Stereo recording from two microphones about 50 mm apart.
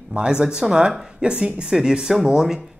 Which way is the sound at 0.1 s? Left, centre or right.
Centre.